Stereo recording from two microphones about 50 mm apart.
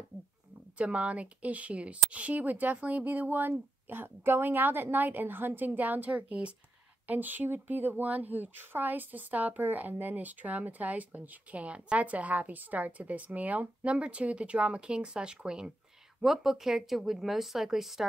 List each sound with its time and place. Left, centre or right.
0.7 s a woman's voice: right; by 18.0 s centre